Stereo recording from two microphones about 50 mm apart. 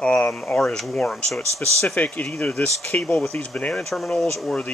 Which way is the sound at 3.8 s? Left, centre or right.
Centre.